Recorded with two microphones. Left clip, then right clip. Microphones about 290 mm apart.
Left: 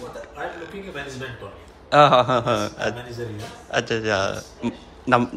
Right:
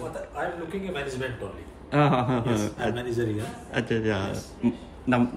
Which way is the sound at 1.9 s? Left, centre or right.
Centre.